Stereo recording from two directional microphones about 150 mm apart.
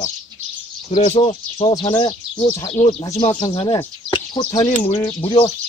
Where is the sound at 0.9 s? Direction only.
50° left (ahead or behind).